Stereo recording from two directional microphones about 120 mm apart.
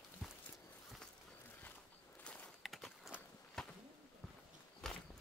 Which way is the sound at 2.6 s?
Centre (ahead or behind).